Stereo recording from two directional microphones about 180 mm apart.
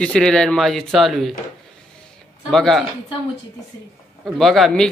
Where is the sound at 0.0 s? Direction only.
5° left (ahead or behind).